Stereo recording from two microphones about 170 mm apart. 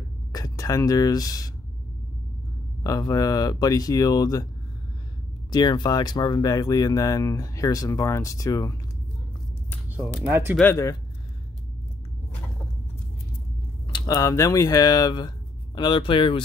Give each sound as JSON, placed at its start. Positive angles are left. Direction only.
{"t": 0.3, "sound": "speech", "side_deg": 20}
{"t": 2.8, "sound": "speech", "side_deg": 20}
{"t": 5.5, "sound": "speech", "side_deg": 25}
{"t": 10.2, "sound": "speech", "side_deg": -15}
{"t": 10.6, "sound": "speech", "side_deg": 15}
{"t": 13.9, "sound": "speech", "side_deg": 20}